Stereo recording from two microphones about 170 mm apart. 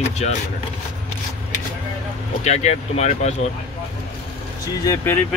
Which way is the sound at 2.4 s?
40° left (ahead or behind).